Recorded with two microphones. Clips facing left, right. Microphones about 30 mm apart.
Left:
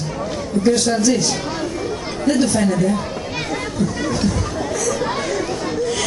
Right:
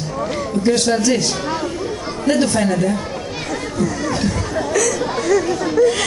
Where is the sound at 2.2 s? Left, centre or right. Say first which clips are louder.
Right 1 dB; right.